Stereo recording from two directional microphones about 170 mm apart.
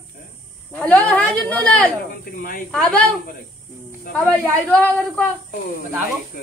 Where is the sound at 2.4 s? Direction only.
55° left (ahead or behind).